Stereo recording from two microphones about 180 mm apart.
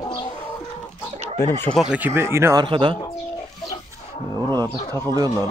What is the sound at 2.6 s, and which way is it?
Speech, 25° right (ahead or behind).